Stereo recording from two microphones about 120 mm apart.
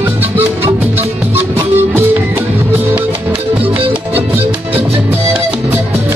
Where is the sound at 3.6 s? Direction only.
50° right (ahead or behind).